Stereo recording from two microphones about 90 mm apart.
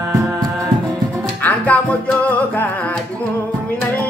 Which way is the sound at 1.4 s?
15° left (ahead or behind).